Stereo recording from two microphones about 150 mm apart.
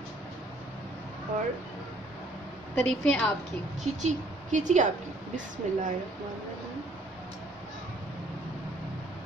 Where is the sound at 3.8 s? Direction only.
55° right (ahead or behind).